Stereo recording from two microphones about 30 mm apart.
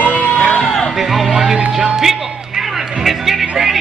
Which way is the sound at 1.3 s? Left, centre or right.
Centre.